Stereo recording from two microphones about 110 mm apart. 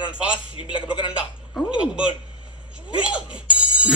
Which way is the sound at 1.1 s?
10° right (ahead or behind).